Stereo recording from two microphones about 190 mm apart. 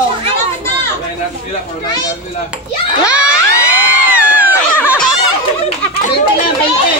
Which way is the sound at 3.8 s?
10° right (ahead or behind).